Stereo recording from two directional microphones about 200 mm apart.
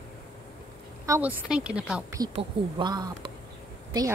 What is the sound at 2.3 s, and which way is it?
Speech, 25° right (ahead or behind).